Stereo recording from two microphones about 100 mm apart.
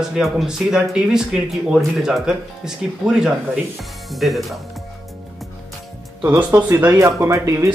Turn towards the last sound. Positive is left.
turn(degrees=-30)  # may be behind; listen again after turning